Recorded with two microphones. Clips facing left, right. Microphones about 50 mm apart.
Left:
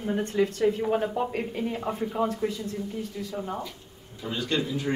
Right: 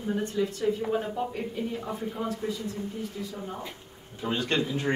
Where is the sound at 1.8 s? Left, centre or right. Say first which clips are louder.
Left 5 dB; left.